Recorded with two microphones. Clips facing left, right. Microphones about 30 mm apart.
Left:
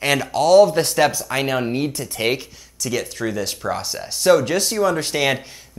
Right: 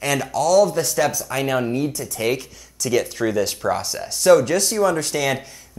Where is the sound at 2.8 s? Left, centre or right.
Centre.